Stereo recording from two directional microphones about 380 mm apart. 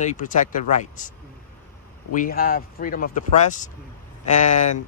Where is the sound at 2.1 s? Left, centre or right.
Left.